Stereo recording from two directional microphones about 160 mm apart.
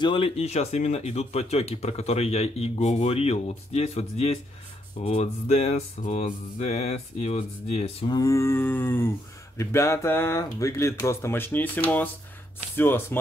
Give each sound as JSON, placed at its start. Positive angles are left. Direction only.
{"t": 0.0, "sound": "speech", "side_deg": 35}
{"t": 8.1, "sound": "speech", "side_deg": 20}